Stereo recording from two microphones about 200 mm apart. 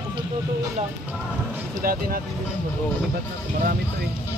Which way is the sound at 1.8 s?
45° right (ahead or behind).